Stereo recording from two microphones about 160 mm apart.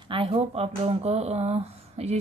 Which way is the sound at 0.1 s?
35° right (ahead or behind).